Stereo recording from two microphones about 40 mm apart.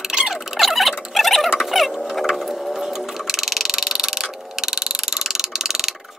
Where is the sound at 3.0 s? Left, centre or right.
Centre.